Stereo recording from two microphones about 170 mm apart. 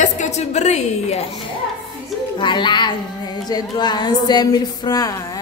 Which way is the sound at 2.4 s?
25° left (ahead or behind).